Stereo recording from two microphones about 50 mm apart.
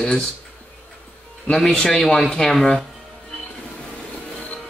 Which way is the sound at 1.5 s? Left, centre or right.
Centre.